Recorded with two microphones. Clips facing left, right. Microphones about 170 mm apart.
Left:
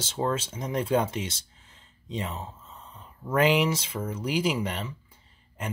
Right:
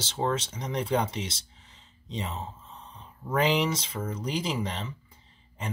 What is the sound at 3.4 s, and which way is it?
Speech, 5° left (ahead or behind).